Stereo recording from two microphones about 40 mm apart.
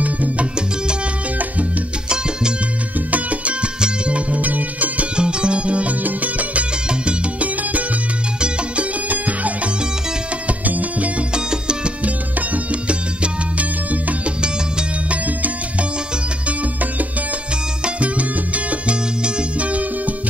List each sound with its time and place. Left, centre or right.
0.0 s salsa music: right
3.1 s music: right
5.1 s music: right
9.1 s music: right
10.6 s music: right
11.3 s music: right
12.0 s music: right
15.0 s music: right
17.8 s salsa music: right
19.6 s music: right